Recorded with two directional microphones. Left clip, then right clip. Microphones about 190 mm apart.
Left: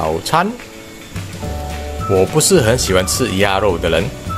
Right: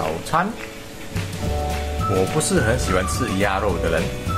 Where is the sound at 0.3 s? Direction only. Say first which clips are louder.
Left 5 dB; 65° left (ahead or behind).